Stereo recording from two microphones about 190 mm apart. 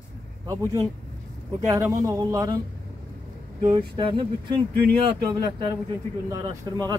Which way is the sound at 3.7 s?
25° right (ahead or behind).